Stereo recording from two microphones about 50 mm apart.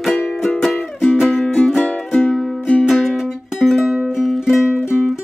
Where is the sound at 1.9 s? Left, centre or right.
Left.